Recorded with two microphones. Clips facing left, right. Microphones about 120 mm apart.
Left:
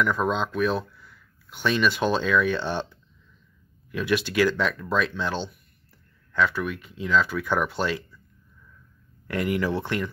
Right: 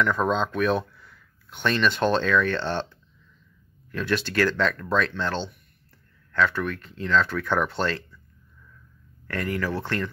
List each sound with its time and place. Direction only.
0.0 s speech: 5° left (ahead or behind)
3.9 s speech: 10° left (ahead or behind)
9.3 s speech: 15° left (ahead or behind)